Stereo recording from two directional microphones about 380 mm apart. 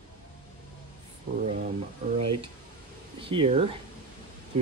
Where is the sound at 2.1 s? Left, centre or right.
Right.